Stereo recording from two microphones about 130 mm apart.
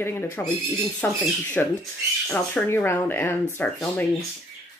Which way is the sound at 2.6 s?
20° left (ahead or behind).